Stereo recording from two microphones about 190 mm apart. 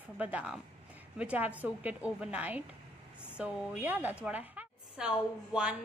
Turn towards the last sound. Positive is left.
turn(degrees=-5)  # may be behind; listen again after turning